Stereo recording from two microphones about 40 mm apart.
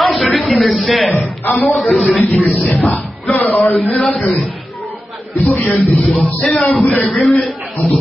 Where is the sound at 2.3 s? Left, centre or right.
Left.